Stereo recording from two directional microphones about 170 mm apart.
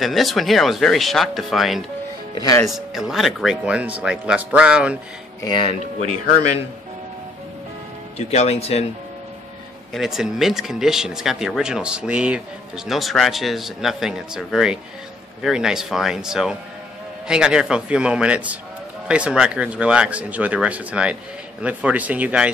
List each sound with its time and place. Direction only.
0.0 s speech: centre (ahead or behind)
2.3 s speech: 20° left (ahead or behind)
2.7 s speech: centre (ahead or behind)
5.4 s speech: 30° left (ahead or behind)
8.3 s speech: 40° left (ahead or behind)
9.9 s speech: centre (ahead or behind)